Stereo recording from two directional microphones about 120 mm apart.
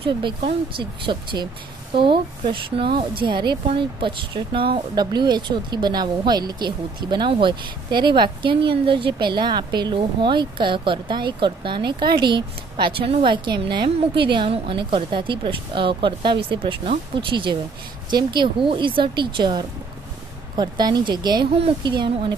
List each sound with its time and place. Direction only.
0.7 s a woman's voice: 45° right (ahead or behind)